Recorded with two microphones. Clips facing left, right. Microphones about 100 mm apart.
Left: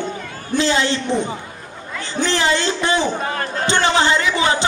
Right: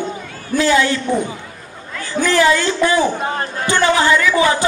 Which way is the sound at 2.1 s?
25° left (ahead or behind).